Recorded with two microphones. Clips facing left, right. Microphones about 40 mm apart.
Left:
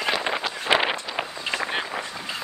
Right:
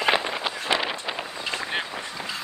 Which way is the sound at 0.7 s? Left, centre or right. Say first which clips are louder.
Left 5 dB; left.